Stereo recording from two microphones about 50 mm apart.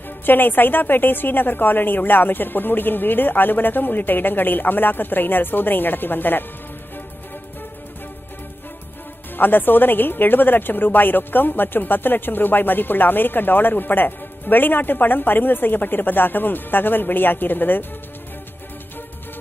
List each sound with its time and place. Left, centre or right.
0.2 s a woman's voice: left
9.4 s speech: left